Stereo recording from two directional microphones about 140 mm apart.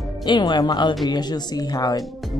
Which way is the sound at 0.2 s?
30° left (ahead or behind).